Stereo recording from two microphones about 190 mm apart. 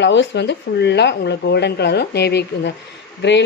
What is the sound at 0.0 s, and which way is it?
Speech, 70° left (ahead or behind).